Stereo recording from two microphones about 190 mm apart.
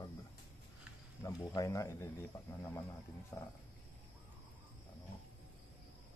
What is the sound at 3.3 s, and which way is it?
Speech, 20° left (ahead or behind).